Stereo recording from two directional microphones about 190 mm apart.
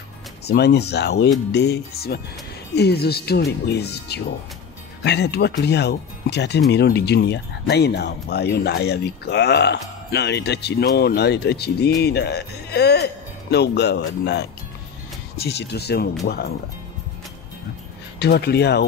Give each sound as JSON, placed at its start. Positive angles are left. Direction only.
{"t": 0.5, "sound": "speech", "side_deg": 60}
{"t": 18.2, "sound": "speech", "side_deg": 60}